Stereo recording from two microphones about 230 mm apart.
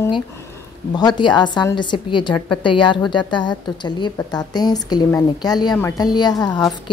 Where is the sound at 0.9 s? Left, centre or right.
Centre.